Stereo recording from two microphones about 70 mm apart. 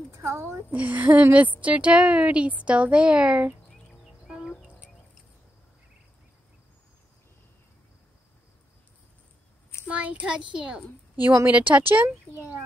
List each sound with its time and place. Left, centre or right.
0.1 s speech: right
0.7 s a woman's voice: right
9.8 s a woman's voice: centre
11.4 s a woman's voice: right